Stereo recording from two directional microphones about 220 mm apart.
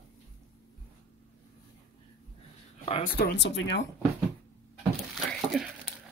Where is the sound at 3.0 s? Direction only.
45° left (ahead or behind).